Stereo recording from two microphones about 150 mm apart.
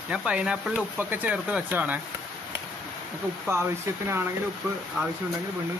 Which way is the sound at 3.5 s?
15° right (ahead or behind).